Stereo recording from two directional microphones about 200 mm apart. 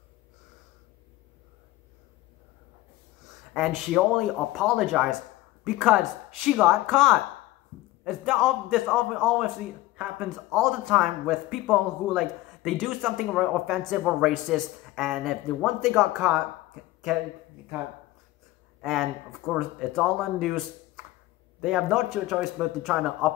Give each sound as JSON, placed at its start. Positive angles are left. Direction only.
{"t": 3.5, "sound": "speech", "side_deg": 0}
{"t": 18.8, "sound": "speech", "side_deg": 0}